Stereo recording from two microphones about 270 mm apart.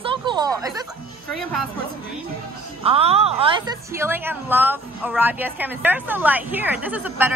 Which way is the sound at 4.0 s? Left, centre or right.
Centre.